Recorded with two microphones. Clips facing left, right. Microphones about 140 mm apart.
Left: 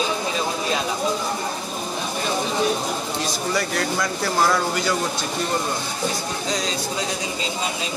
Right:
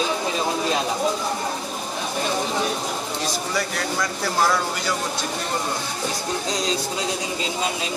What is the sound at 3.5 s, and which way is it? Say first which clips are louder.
Speech: left 2 dB; centre (ahead or behind).